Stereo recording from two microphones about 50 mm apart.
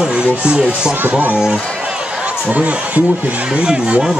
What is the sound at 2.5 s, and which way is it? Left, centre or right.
Speech, right.